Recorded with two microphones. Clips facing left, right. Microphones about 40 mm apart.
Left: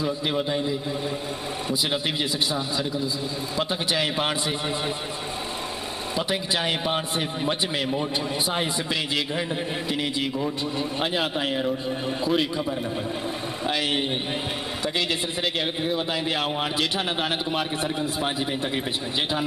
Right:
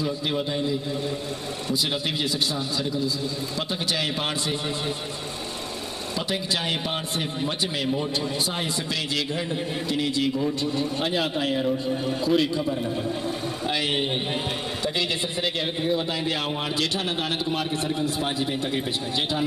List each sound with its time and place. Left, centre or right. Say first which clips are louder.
0.0 s a man's voice: left 1 dB; centre
2.5 s a man's voice: left 1 dB; centre
6.1 s a man's voice: left 2 dB; centre
9.8 s a man's voice: right 5 dB; centre
15.8 s a man's voice: right 3 dB; centre